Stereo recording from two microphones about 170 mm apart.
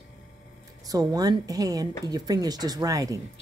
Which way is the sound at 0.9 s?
20° right (ahead or behind).